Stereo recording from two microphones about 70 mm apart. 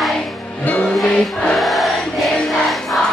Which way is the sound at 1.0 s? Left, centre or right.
Centre.